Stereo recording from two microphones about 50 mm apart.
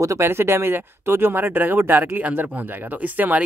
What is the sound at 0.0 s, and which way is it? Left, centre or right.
Speech, right.